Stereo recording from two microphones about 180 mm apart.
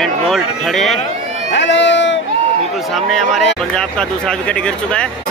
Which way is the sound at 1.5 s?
80° left.